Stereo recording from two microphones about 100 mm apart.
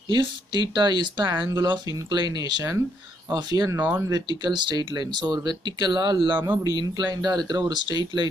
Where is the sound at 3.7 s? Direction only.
20° right (ahead or behind).